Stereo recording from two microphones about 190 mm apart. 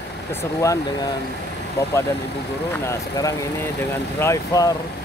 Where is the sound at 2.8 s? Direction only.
15° left (ahead or behind).